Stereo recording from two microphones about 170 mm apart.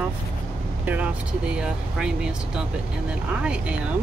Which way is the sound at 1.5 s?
5° right (ahead or behind).